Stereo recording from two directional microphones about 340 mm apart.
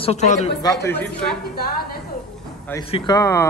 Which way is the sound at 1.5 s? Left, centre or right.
Left.